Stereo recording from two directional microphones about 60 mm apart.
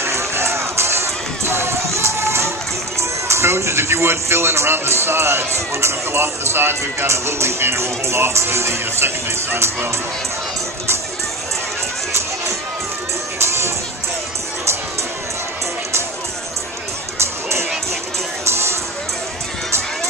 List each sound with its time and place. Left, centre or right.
0.0 s run: right
3.0 s speech: right
13.4 s music: right
17.2 s music: right